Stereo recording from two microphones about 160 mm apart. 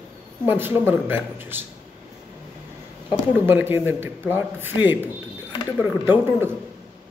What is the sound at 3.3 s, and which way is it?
A man's voice, 15° right (ahead or behind).